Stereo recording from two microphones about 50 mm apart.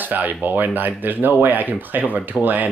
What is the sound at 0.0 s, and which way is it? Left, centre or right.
Speech, right.